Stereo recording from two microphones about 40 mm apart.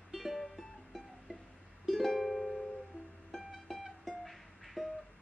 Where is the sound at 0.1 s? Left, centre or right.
Centre.